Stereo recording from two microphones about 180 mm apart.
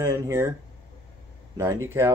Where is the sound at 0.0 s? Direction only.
15° right (ahead or behind).